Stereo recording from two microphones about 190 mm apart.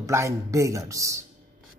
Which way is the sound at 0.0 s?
15° right (ahead or behind).